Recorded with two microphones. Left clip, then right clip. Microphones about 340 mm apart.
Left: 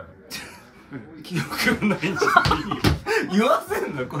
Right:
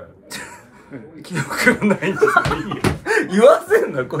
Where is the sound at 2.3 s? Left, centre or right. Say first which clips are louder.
Even; left.